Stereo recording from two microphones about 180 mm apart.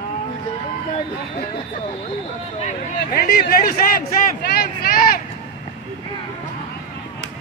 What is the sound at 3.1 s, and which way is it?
Speech, 60° left (ahead or behind).